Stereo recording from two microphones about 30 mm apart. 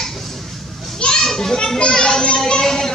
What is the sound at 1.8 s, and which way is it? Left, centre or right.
A child's voice, left.